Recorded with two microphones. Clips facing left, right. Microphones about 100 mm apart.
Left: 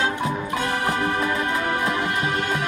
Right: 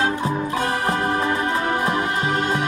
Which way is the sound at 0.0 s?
35° right (ahead or behind).